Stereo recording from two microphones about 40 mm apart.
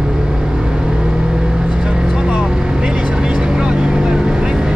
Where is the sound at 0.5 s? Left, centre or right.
Right.